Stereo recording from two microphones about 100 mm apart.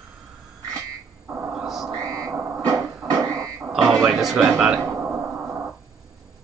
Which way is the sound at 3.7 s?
5° right (ahead or behind).